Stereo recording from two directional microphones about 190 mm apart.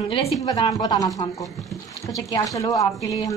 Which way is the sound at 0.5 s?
20° left (ahead or behind).